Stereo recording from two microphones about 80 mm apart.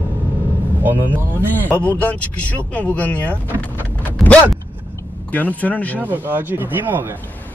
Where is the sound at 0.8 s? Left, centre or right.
Right.